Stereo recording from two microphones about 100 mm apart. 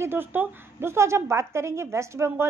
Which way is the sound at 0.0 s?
20° right (ahead or behind).